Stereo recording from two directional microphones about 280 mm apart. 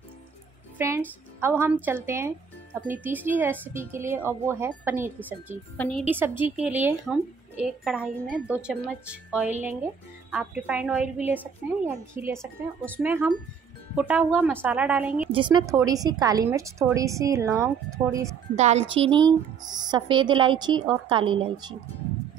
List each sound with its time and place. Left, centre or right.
0.7 s a woman's voice: centre
5.2 s a woman's voice: centre
6.0 s a woman's voice: centre
15.3 s a woman's voice: centre
18.6 s a woman's voice: right